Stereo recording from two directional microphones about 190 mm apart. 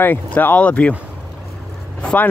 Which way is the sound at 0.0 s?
10° left (ahead or behind).